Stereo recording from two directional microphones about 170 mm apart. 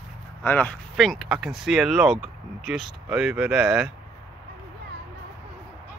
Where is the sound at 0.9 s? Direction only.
Centre (ahead or behind).